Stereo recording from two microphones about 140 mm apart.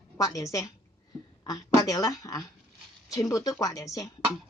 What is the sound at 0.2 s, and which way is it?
A woman's voice, 25° left (ahead or behind).